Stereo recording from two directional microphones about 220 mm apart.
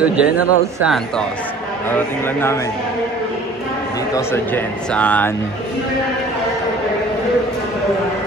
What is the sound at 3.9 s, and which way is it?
Speech, 15° left (ahead or behind).